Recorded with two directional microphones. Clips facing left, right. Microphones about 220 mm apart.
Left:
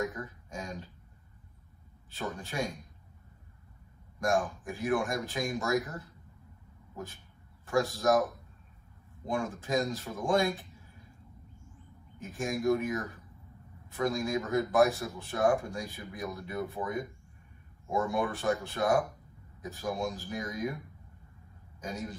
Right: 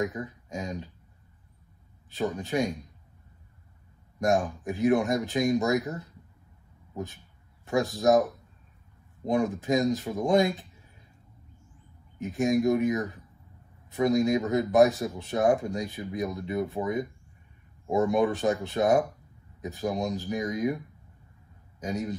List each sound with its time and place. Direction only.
0.0 s speech: 20° right (ahead or behind)
2.0 s speech: 20° right (ahead or behind)
4.2 s speech: 20° right (ahead or behind)
7.6 s speech: 20° right (ahead or behind)
9.2 s speech: 20° right (ahead or behind)
12.2 s speech: 20° right (ahead or behind)